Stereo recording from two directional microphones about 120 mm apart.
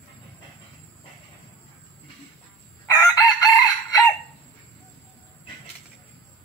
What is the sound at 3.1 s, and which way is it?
Chicken, 30° left (ahead or behind).